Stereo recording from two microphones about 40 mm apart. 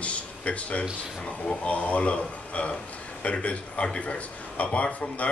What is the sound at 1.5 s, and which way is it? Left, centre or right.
A man's voice, left.